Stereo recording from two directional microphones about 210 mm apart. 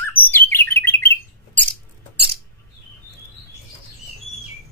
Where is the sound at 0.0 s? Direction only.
10° left (ahead or behind).